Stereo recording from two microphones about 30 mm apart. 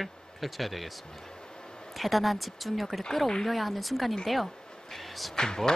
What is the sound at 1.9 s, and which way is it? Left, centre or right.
A man's voice, centre.